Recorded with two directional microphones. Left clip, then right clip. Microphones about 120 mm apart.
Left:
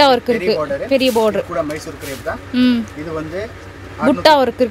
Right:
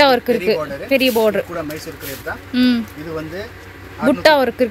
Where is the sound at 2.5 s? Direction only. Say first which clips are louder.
Left 1 dB; centre (ahead or behind).